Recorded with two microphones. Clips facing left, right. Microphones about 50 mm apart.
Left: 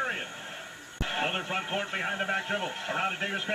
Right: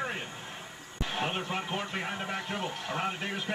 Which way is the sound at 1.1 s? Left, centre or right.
Left.